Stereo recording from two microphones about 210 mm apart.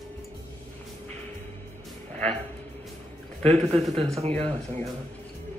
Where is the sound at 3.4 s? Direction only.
30° right (ahead or behind).